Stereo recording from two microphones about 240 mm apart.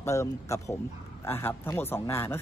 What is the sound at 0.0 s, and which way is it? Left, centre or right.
A man's voice, centre.